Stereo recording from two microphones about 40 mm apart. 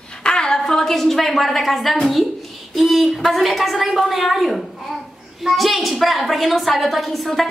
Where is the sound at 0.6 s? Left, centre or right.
Centre.